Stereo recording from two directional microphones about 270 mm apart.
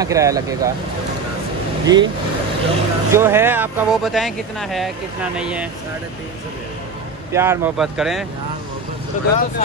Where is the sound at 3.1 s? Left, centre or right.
Centre.